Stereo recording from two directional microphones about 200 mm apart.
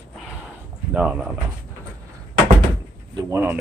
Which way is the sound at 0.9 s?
5° right (ahead or behind).